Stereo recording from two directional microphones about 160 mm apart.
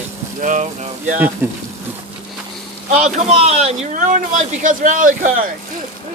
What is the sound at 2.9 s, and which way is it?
A man's voice, 45° right (ahead or behind).